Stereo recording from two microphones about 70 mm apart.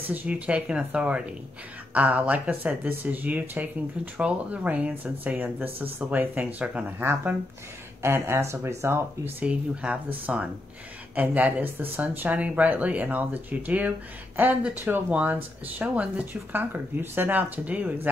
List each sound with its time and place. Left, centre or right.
0.1 s speech: right
7.0 s speech: right
9.4 s speech: centre